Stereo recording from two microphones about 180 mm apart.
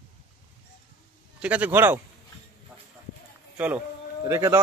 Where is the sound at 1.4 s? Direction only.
10° right (ahead or behind).